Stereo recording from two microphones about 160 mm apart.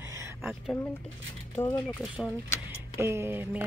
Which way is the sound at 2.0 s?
5° right (ahead or behind).